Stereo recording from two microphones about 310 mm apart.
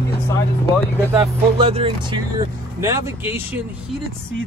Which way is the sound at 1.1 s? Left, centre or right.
Centre.